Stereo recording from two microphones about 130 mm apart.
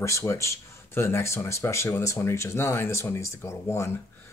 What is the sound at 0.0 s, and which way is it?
A man's voice, 25° left (ahead or behind).